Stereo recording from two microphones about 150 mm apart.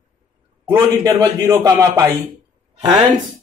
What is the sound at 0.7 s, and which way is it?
Speech, 25° right (ahead or behind).